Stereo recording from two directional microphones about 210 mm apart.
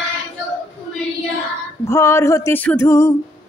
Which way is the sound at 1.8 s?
15° left (ahead or behind).